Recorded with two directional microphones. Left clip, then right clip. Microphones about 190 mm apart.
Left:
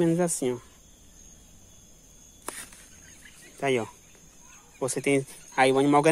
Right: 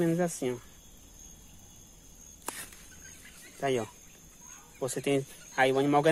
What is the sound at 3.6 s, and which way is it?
Speech, 30° left (ahead or behind).